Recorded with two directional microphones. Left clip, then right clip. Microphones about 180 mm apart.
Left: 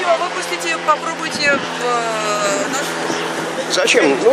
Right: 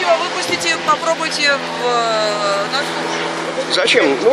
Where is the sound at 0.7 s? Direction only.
50° right (ahead or behind).